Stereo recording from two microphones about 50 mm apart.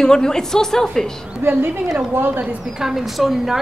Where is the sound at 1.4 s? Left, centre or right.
Right.